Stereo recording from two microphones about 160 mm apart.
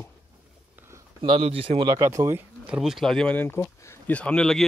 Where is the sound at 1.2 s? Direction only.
35° right (ahead or behind).